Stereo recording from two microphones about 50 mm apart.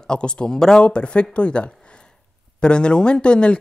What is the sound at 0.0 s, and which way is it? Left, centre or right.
Speech, centre.